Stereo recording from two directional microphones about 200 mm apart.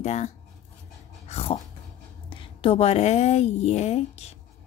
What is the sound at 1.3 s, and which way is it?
Dog, 30° left (ahead or behind).